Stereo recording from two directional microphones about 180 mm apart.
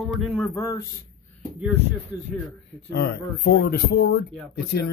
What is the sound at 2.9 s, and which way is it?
Speech, 65° left (ahead or behind).